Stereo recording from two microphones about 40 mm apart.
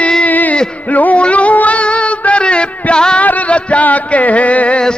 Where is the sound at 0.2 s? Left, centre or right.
Left.